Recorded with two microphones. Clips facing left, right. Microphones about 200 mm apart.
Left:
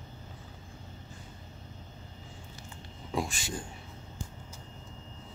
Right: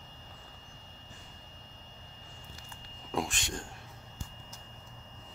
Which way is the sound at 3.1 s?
Centre (ahead or behind).